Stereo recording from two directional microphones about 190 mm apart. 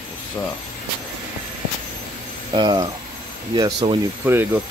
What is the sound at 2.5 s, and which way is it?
Speech, 20° right (ahead or behind).